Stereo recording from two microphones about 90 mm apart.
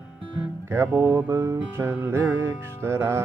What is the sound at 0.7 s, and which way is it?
Music, 25° right (ahead or behind).